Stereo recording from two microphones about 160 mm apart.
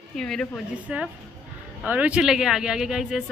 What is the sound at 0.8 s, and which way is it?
A woman's voice, 10° right (ahead or behind).